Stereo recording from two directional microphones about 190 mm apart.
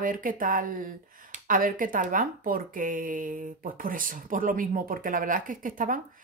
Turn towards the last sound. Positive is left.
turn(degrees=-45)  # may be behind; listen again after turning